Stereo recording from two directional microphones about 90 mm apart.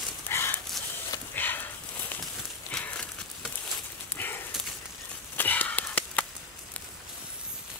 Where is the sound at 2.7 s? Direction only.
15° left (ahead or behind).